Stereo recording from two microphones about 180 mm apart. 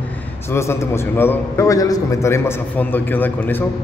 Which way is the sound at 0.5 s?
15° left (ahead or behind).